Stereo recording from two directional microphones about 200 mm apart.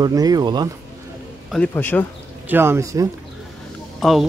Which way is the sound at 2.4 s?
10° right (ahead or behind).